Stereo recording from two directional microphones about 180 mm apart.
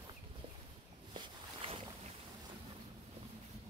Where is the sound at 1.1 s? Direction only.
30° right (ahead or behind).